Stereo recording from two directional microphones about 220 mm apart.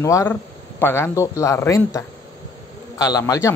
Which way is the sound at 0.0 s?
15° left (ahead or behind).